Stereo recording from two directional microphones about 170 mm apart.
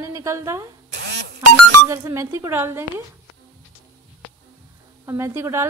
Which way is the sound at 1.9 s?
15° right (ahead or behind).